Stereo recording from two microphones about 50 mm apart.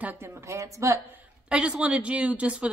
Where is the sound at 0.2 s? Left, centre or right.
Right.